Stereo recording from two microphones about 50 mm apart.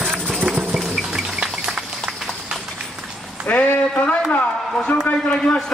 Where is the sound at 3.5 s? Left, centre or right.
Left.